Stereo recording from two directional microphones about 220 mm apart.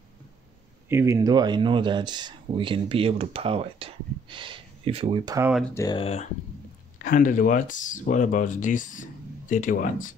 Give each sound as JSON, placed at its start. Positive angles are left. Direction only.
{"t": 0.8, "sound": "speech", "side_deg": -10}
{"t": 5.8, "sound": "speech", "side_deg": 20}
{"t": 7.0, "sound": "speech", "side_deg": 40}